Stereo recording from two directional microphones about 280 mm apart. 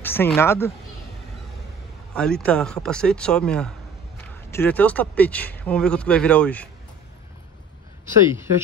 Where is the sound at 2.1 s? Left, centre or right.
Centre.